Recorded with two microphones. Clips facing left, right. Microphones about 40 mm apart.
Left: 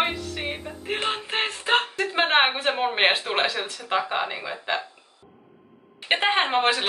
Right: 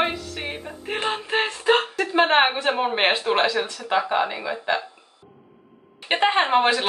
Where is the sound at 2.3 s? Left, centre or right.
Centre.